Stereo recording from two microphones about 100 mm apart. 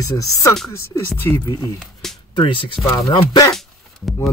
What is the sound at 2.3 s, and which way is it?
Speech, 55° left (ahead or behind).